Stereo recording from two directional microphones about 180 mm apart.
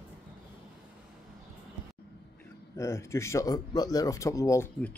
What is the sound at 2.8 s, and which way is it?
A man's voice, 15° left (ahead or behind).